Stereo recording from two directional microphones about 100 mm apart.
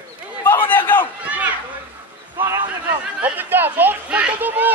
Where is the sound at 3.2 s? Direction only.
20° right (ahead or behind).